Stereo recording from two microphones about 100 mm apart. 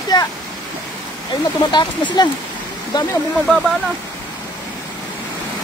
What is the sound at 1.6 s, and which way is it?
Speech, 50° left (ahead or behind).